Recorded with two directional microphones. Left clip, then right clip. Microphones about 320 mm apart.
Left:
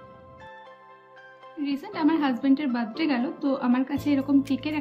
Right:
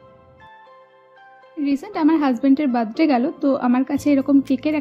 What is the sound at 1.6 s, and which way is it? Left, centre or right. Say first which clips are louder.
A woman's voice: right 6 dB; centre.